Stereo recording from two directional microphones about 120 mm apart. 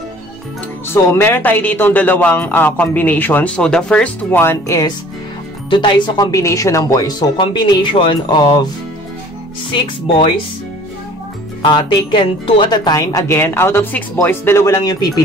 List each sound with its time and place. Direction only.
0.8 s speech: 20° left (ahead or behind)
5.7 s speech: 40° left (ahead or behind)
9.7 s speech: 45° left (ahead or behind)
11.6 s speech: 40° left (ahead or behind)